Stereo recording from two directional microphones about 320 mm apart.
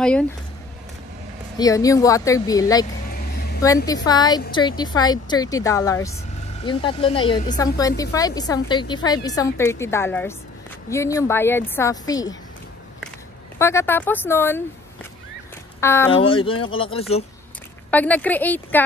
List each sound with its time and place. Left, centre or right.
1.6 s a woman's voice: centre
13.6 s a woman's voice: centre
15.8 s speech: centre
16.1 s speech: left
16.6 s a woman's voice: centre
17.9 s speech: centre